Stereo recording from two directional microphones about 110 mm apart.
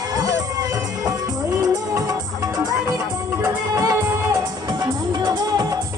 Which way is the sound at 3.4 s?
30° right (ahead or behind).